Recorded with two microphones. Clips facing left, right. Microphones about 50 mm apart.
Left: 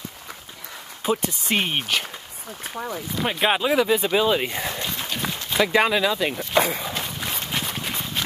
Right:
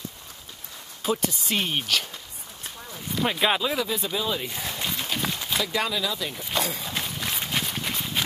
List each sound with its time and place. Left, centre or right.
1.0 s speech: left
2.7 s speech: left
3.2 s speech: centre
3.4 s speech: left
4.1 s speech: left
4.8 s run: centre
5.6 s speech: left
6.3 s a sound: left
7.0 s run: centre